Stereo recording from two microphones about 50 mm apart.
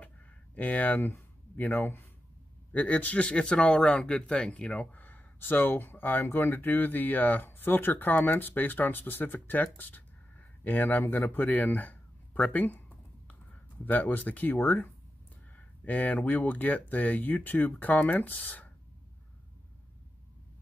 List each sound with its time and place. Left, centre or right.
0.6 s speech: left
2.7 s speech: left
3.3 s speech: centre
4.9 s speech: left
6.2 s speech: left
6.5 s speech: left
13.8 s speech: left
15.5 s speech: left